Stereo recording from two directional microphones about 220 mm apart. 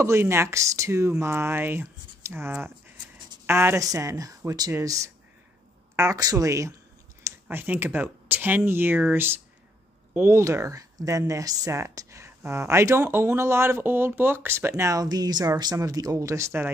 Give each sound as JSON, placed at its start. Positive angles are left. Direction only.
{"t": 0.0, "sound": "speech", "side_deg": -10}